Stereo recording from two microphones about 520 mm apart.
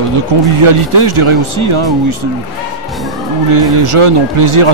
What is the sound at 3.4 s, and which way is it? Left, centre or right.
Speech, right.